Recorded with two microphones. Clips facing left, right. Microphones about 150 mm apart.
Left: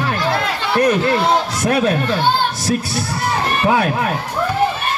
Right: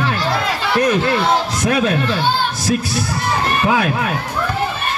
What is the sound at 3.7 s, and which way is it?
Speech, 35° left (ahead or behind).